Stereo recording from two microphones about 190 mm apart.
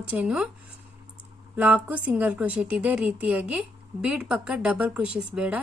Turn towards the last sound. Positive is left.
turn(degrees=-5)  # may be behind; listen again after turning